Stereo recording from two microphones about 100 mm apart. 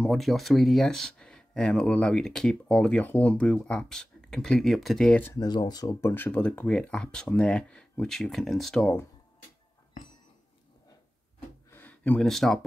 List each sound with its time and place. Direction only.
0.0 s speech: centre (ahead or behind)
5.4 s speech: 40° left (ahead or behind)
5.9 s speech: 25° left (ahead or behind); by 8.9 s 5° left (ahead or behind)
11.7 s a sound: 15° left (ahead or behind)